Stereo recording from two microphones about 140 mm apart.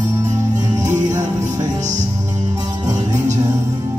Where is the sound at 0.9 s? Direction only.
25° right (ahead or behind).